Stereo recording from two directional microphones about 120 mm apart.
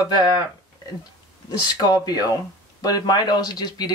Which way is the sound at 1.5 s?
35° left (ahead or behind).